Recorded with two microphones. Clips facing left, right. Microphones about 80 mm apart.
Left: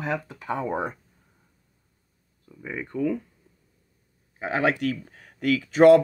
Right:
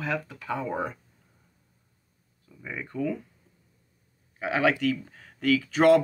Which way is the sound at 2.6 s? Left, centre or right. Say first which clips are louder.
Left 3 dB; left.